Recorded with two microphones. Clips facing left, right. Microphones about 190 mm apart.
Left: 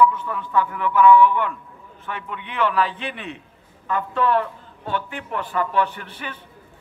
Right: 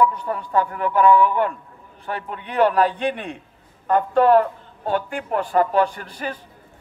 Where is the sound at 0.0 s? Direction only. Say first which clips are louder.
Left 1 dB; 40° right (ahead or behind).